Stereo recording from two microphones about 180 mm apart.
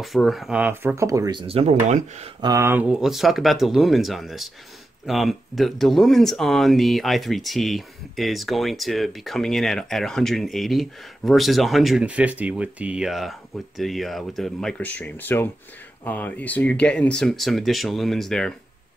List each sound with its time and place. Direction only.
0.0 s speech: centre (ahead or behind); by 1.4 s 20° right (ahead or behind)
1.5 s speech: 35° right (ahead or behind)
2.4 s speech: 15° right (ahead or behind); by 18.5 s 5° left (ahead or behind)